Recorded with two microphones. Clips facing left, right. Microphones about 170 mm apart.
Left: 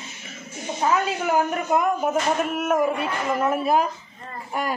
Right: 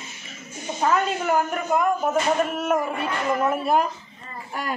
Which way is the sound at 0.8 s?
5° left (ahead or behind).